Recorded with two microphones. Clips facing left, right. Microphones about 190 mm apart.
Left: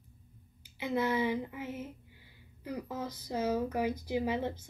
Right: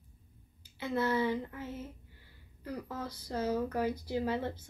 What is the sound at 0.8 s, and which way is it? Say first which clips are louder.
Speech: even; 15° left (ahead or behind).